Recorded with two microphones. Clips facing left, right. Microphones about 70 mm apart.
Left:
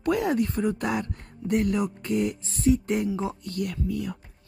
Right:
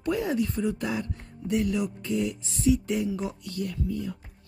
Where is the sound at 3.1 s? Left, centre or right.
Left.